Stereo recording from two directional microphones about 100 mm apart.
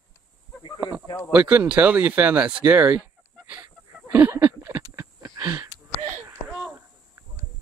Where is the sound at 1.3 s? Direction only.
15° right (ahead or behind).